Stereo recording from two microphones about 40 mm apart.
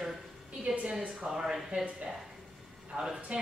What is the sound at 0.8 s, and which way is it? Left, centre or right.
Speech, right.